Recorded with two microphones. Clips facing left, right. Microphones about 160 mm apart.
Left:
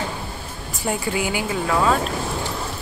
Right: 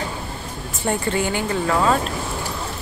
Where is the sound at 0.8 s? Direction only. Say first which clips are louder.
Right 2 dB; 5° left (ahead or behind).